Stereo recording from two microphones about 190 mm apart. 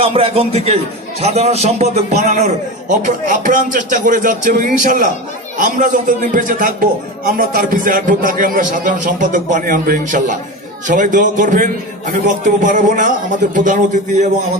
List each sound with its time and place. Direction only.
0.0 s a man's voice: 30° right (ahead or behind)